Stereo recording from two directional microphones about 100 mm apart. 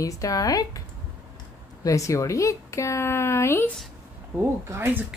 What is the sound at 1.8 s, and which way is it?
Speech, 30° left (ahead or behind).